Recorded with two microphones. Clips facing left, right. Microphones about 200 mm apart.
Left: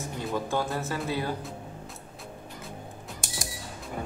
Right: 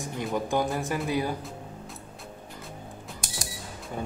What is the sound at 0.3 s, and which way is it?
Speech, 15° right (ahead or behind).